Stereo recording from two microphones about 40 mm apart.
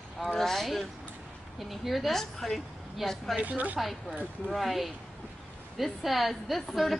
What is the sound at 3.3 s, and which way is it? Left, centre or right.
Speech, right.